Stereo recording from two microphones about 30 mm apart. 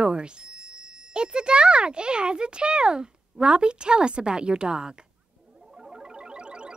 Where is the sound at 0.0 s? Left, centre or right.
Right.